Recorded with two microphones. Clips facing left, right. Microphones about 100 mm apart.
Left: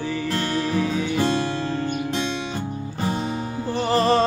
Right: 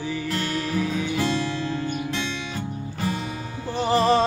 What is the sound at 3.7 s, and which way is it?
Music, 10° right (ahead or behind).